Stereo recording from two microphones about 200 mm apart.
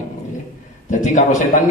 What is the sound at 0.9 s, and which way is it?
Speech, 40° left (ahead or behind).